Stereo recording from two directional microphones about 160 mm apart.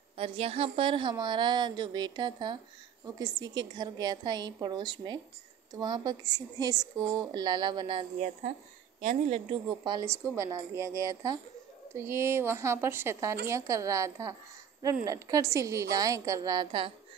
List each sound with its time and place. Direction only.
0.2 s a woman's voice: 35° right (ahead or behind)
9.0 s a woman's voice: 50° right (ahead or behind)
9.5 s a woman's voice: 30° right (ahead or behind)